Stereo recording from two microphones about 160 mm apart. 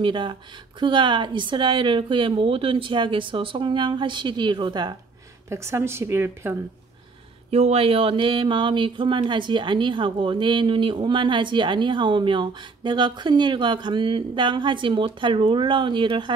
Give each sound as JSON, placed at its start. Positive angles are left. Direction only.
{"t": 0.0, "sound": "speech", "side_deg": -30}
{"t": 5.5, "sound": "speech", "side_deg": -15}
{"t": 7.5, "sound": "speech", "side_deg": -40}